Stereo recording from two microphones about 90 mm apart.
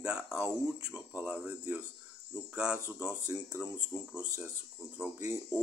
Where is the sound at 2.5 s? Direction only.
15° right (ahead or behind).